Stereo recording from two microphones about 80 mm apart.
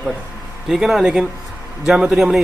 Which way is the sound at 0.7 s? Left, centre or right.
Centre.